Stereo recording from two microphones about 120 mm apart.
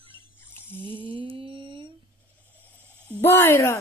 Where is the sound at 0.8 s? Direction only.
45° right (ahead or behind).